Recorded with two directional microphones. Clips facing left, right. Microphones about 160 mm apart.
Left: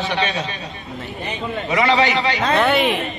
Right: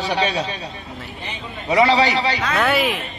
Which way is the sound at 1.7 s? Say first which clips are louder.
Right 2 dB; 35° right (ahead or behind).